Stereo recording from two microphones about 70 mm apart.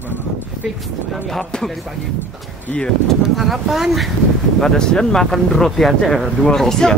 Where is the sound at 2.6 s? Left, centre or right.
Centre.